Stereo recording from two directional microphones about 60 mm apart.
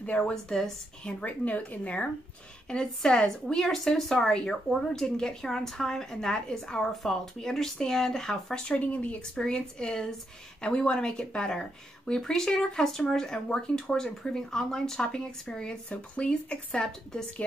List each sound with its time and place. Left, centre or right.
0.2 s speech: centre
1.2 s speech: left
2.7 s speech: centre
8.7 s speech: left
9.2 s speech: centre